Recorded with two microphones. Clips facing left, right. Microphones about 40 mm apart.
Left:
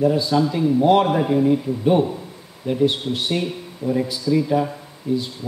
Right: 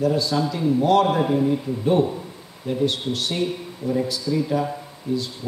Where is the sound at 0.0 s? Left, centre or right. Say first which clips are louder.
Left 3 dB; centre.